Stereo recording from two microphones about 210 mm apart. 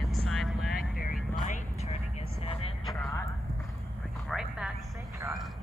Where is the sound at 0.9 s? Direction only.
45° left (ahead or behind); by 2.8 s 30° left (ahead or behind).